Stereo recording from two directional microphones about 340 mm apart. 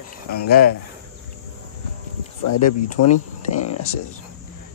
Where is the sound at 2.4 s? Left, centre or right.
Left.